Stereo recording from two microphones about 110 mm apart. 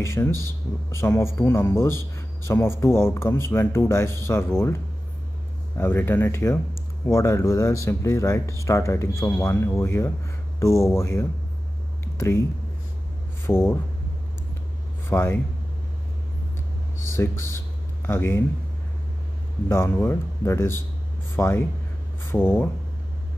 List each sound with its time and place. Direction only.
0.0 s speech: 25° left (ahead or behind)
2.1 s a sound: 25° left (ahead or behind)
2.8 s speech: 20° left (ahead or behind)
5.8 s speech: 20° left (ahead or behind)
12.0 s a sound: 25° left (ahead or behind)
13.5 s speech: 20° left (ahead or behind)
15.0 s speech: 20° left (ahead or behind)
17.1 s speech: 25° left (ahead or behind)
19.7 s speech: 20° left (ahead or behind)